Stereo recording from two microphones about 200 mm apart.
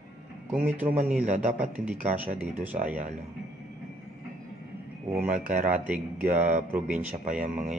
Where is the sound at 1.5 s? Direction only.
5° right (ahead or behind).